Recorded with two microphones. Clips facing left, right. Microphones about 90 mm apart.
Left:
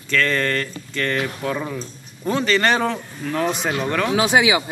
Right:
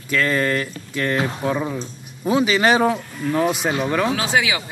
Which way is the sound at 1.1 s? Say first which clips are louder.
Right 4 dB; 20° right (ahead or behind).